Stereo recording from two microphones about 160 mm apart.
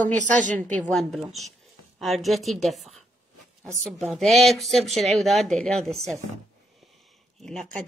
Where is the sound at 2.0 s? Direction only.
Centre (ahead or behind).